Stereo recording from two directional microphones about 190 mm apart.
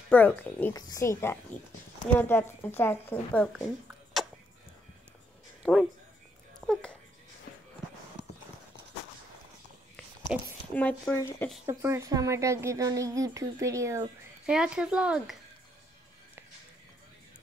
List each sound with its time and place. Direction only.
0.1 s a woman's voice: 10° left (ahead or behind)
3.5 s a sound: centre (ahead or behind)
5.6 s speech: 5° right (ahead or behind)
10.2 s a woman's voice: 5° left (ahead or behind)
11.6 s a woman's voice: 15° right (ahead or behind)
14.5 s speech: 5° right (ahead or behind)